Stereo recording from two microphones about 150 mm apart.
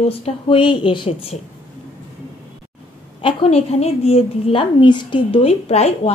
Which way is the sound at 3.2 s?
35° left (ahead or behind).